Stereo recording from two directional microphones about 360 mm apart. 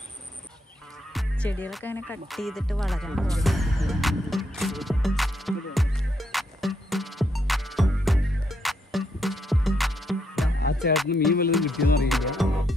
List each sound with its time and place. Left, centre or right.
1.1 s music: centre
10.6 s music: left
11.5 s music: centre